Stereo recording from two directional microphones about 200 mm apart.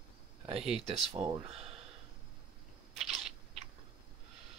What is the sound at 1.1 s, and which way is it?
Speech, 25° right (ahead or behind).